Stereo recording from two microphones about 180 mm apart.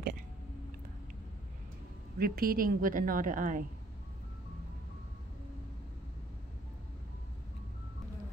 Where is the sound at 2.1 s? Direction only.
55° right (ahead or behind).